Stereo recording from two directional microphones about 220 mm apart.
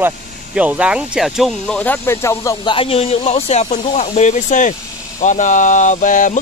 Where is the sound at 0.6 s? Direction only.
5° right (ahead or behind).